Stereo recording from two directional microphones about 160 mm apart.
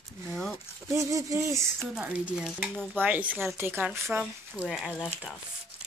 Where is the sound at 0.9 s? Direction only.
20° right (ahead or behind).